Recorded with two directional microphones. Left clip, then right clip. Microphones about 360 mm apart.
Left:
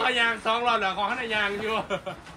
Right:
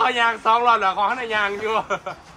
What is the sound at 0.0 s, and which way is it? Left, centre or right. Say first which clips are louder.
A man's voice: right 5 dB; centre.